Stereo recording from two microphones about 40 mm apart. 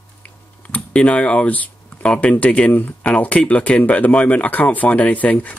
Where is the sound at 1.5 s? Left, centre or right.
Left.